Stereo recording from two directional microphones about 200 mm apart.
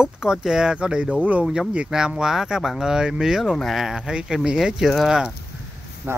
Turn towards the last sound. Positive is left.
turn(degrees=-10)  # may be behind; listen again after turning